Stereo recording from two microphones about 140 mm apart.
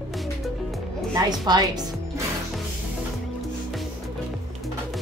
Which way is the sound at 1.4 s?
30° right (ahead or behind).